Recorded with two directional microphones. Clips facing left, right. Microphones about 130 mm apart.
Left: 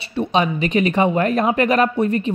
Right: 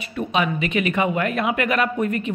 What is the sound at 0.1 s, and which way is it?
Speech, 35° left (ahead or behind).